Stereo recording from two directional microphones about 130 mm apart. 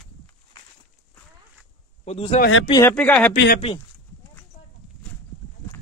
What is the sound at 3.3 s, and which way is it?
Speech, 45° left (ahead or behind).